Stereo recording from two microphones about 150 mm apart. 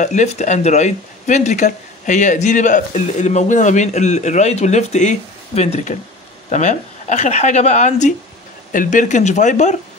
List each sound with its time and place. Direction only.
0.0 s speech: 55° left (ahead or behind)